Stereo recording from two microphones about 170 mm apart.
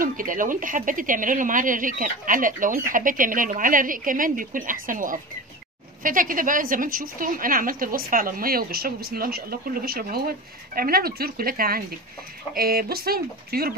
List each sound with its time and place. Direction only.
0.0 s a woman's voice: 55° right (ahead or behind)